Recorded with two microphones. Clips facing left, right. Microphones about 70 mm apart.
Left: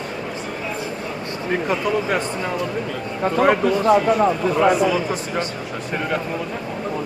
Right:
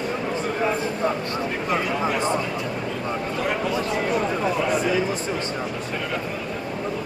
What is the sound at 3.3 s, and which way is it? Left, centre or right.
Speech, left.